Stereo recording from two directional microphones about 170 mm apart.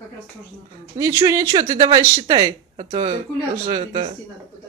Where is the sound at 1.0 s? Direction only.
20° right (ahead or behind); by 4.1 s 35° right (ahead or behind).